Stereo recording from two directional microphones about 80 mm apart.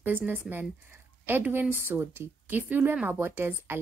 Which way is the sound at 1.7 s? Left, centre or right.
Right.